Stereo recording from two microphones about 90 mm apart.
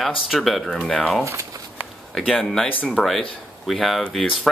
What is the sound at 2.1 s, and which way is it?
Speech, 5° left (ahead or behind).